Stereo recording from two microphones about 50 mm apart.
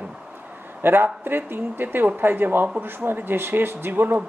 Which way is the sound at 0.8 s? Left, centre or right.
Right.